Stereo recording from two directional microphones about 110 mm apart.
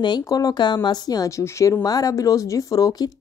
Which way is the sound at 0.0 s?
40° left (ahead or behind).